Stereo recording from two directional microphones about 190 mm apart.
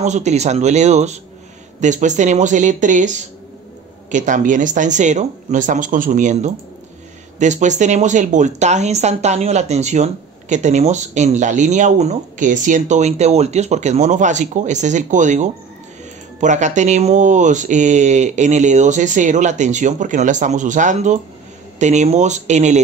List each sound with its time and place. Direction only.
0.0 s speech: 35° right (ahead or behind)